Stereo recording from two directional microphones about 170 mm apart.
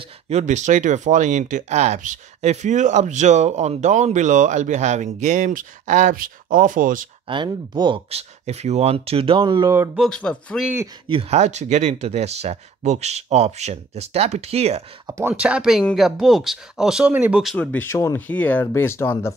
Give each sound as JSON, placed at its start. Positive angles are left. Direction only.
{"t": 0.0, "sound": "speech", "side_deg": -40}
{"t": 7.2, "sound": "speech", "side_deg": -25}
{"t": 9.9, "sound": "speech", "side_deg": 5}
{"t": 11.1, "sound": "speech", "side_deg": -35}
{"t": 15.0, "sound": "speech", "side_deg": -15}
{"t": 17.6, "sound": "speech", "side_deg": 10}